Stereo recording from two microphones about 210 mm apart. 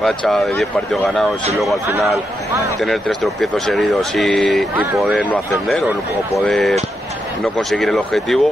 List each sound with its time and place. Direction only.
0.3 s speech: centre (ahead or behind)